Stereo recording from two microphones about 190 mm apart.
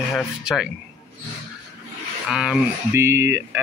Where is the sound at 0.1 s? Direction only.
5° right (ahead or behind).